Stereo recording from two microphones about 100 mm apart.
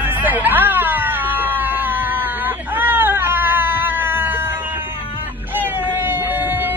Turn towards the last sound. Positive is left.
turn(degrees=-20)  # may be behind; listen again after turning